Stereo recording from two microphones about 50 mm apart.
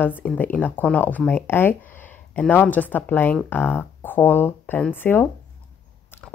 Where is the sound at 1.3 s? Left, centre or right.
Left.